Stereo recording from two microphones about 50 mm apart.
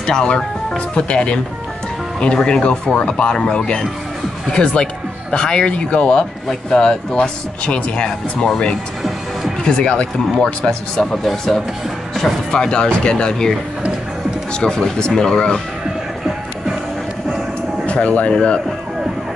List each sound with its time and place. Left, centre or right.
0.0 s speech: centre
9.7 s speech: centre
17.8 s speech: left